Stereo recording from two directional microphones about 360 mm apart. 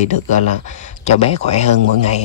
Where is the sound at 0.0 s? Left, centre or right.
Centre.